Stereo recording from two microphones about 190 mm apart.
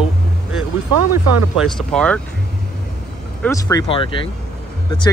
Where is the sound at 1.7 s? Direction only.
5° left (ahead or behind).